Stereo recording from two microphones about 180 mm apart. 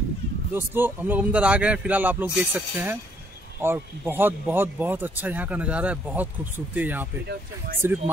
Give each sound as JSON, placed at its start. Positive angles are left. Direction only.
{"t": 0.5, "sound": "speech", "side_deg": -10}